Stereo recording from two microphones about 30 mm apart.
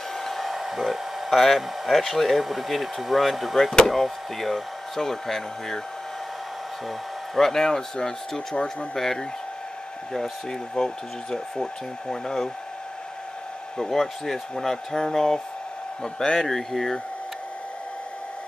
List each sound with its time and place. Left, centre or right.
0.2 s hair dryer: centre
1.3 s speech: centre
7.3 s speech: centre
13.8 s speech: centre